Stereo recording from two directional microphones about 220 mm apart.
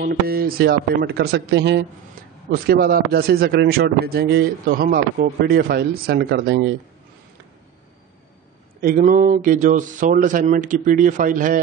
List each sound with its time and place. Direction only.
0.0 s speech: 45° right (ahead or behind)
8.8 s speech: 35° right (ahead or behind)